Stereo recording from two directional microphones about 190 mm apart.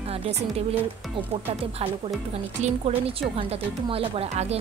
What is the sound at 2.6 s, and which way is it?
Speech, 35° right (ahead or behind).